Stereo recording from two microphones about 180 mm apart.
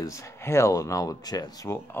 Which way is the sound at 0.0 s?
15° left (ahead or behind).